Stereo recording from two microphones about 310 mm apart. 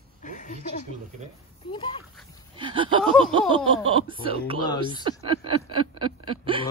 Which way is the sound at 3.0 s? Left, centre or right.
Centre.